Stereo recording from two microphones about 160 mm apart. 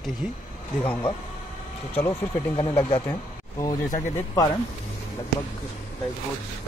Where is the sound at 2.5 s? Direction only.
15° left (ahead or behind).